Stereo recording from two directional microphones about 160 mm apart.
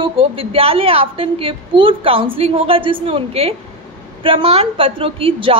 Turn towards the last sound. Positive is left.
turn(degrees=-35)  # may be behind; listen again after turning